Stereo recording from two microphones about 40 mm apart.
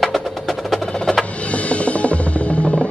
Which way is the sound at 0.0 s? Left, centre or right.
Centre.